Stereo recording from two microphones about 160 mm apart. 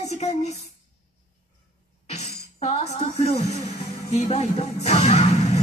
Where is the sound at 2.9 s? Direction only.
45° right (ahead or behind).